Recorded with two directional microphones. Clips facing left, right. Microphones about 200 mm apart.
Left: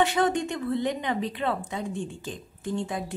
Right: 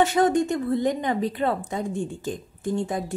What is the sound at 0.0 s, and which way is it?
A woman's voice, 45° right (ahead or behind).